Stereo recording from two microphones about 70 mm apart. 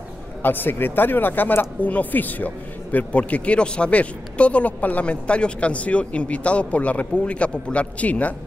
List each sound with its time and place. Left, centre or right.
0.4 s speech: left